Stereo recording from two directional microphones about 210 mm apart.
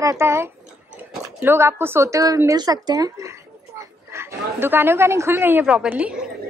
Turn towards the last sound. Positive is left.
turn(degrees=-5)  # may be behind; listen again after turning